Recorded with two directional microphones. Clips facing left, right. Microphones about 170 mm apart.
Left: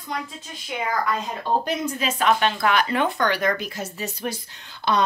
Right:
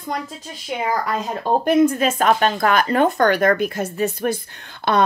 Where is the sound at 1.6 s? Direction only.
55° right (ahead or behind).